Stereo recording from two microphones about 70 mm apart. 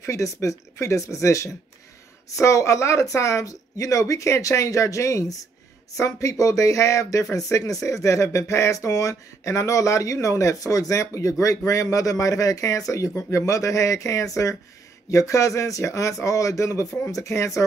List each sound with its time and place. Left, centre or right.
0.0 s speech: left